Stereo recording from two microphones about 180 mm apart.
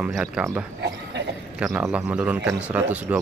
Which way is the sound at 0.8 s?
70° right (ahead or behind).